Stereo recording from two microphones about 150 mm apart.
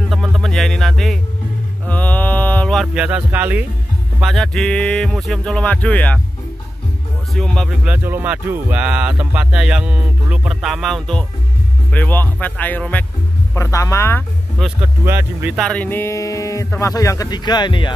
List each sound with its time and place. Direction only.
0.1 s music: centre (ahead or behind)
1.9 s a sound: 10° left (ahead or behind); by 3.6 s 10° right (ahead or behind)
4.2 s speech: centre (ahead or behind)
7.3 s speech: centre (ahead or behind)
14.8 s speech: 15° right (ahead or behind)
15.5 s speech: 5° left (ahead or behind); by 17.9 s 30° left (ahead or behind)